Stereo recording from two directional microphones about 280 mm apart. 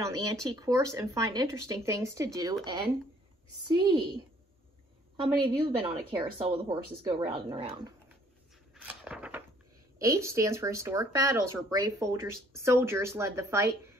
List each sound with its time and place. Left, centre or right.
0.0 s speech: centre
5.6 s speech: centre
8.7 s a sound: centre
9.9 s speech: centre